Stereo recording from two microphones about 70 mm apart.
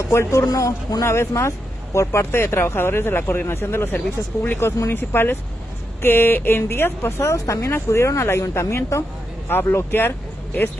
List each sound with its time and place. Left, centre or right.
0.0 s a man's voice: left
3.9 s speech: left
4.6 s speech: left
9.5 s speech: left